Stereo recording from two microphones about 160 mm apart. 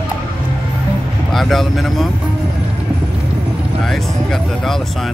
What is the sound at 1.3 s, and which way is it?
Speech, centre (ahead or behind).